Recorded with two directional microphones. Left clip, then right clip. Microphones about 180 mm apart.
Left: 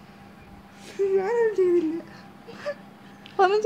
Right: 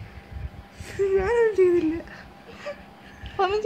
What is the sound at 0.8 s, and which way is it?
Speech, 20° right (ahead or behind).